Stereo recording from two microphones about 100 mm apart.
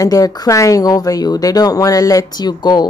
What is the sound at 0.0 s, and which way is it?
Speech, 35° left (ahead or behind).